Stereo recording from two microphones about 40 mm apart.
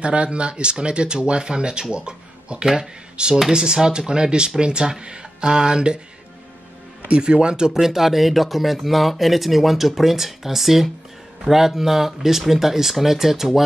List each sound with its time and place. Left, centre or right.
0.0 s speech: right
7.1 s speech: right; by 13.5 s centre